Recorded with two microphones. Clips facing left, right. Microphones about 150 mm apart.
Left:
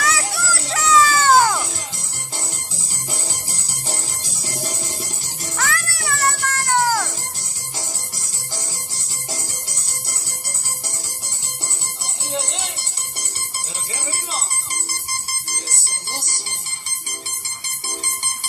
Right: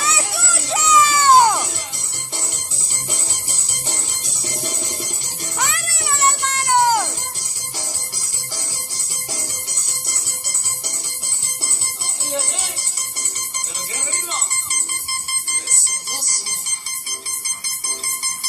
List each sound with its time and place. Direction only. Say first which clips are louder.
0.0 s children playing: left 2 dB; 25° right (ahead or behind)
5.6 s music: left 1 dB; 20° right (ahead or behind)
15.7 s music: left 2 dB; 25° left (ahead or behind)